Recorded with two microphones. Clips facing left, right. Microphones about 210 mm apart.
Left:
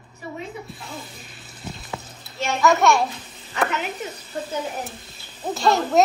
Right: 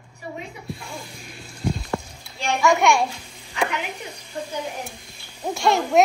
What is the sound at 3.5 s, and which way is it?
A woman's voice, 15° right (ahead or behind).